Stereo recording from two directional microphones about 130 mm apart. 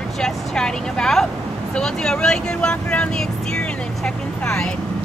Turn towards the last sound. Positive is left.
turn(degrees=5)  # may be behind; listen again after turning